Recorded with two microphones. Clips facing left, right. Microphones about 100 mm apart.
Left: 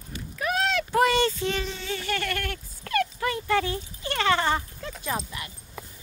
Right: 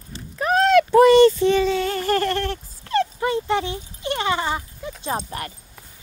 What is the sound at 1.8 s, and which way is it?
Dog, 45° right (ahead or behind).